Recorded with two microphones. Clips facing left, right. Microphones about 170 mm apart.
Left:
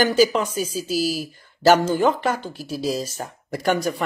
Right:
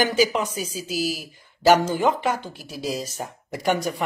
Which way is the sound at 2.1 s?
10° right (ahead or behind).